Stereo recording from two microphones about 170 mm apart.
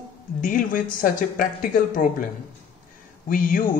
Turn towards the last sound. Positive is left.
turn(degrees=55)  # may be behind; listen again after turning